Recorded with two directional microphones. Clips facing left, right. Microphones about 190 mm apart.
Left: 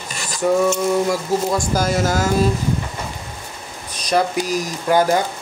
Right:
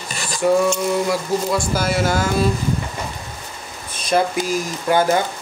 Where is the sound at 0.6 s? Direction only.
45° left (ahead or behind).